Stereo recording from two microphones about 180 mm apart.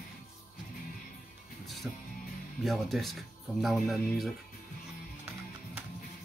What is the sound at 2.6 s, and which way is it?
Speech, centre (ahead or behind).